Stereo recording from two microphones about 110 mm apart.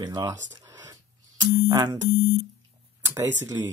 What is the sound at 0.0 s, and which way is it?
Speech, 30° right (ahead or behind).